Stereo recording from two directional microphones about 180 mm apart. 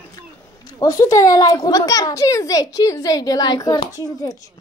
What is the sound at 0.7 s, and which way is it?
Speech, 20° left (ahead or behind).